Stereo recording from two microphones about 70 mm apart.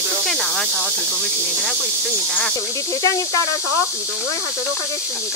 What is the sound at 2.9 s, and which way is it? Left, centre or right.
Speech, left.